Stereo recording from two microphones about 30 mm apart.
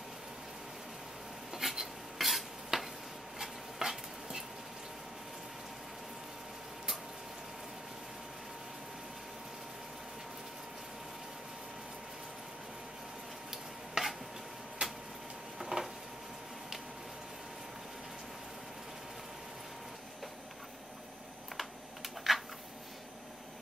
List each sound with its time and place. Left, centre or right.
1.5 s stir: centre
3.3 s dishes: centre
13.5 s stir: centre
14.8 s a sound: right
21.5 s computer keyboard: centre